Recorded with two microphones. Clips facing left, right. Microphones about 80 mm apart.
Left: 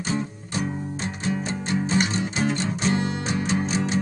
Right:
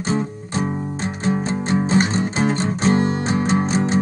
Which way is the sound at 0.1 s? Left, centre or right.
Right.